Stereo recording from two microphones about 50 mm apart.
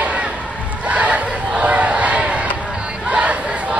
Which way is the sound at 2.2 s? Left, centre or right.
Right.